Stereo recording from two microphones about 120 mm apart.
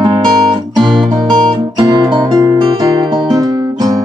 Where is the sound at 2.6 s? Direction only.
45° right (ahead or behind).